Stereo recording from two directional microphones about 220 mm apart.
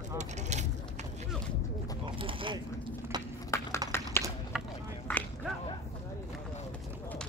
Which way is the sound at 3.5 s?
15° left (ahead or behind).